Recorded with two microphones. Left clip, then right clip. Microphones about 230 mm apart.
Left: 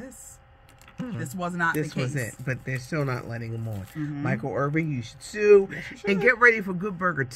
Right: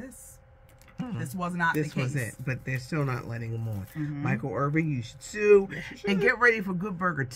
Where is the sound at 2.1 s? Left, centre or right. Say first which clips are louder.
Left 3 dB; centre.